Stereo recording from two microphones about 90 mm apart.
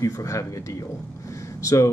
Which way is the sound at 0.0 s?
35° left (ahead or behind).